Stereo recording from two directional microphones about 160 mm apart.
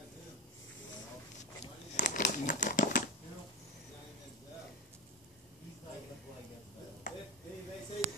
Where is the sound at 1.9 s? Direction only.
50° left (ahead or behind).